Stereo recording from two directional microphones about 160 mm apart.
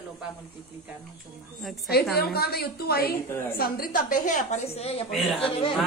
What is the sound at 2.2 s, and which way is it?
Speech, 80° left.